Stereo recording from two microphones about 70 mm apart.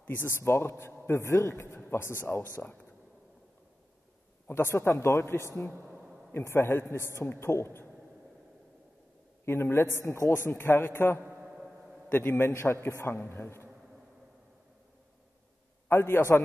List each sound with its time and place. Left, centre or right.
0.0 s a man's voice: left
4.5 s a man's voice: left
5.9 s a sound: centre
6.3 s a man's voice: left
9.5 s a man's voice: left
11.4 s a sound: centre
12.1 s a man's voice: left
15.9 s a man's voice: left